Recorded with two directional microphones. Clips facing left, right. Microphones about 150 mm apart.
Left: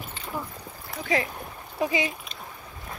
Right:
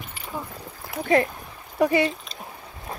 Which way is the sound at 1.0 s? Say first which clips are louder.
Right 6 dB; 50° right (ahead or behind).